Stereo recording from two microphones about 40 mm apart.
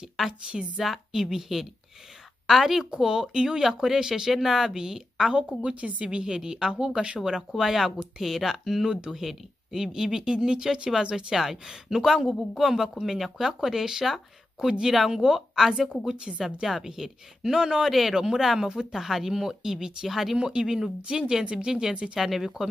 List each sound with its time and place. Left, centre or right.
0.3 s a woman's voice: right
0.7 s a woman's voice: centre
5.6 s a woman's voice: right; by 15.9 s centre
16.3 s a woman's voice: centre
16.6 s speech: centre
17.8 s speech: centre
20.1 s speech: centre
20.3 s a woman's voice: centre